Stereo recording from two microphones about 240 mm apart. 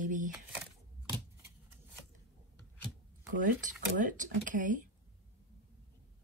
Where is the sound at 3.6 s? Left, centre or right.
Right.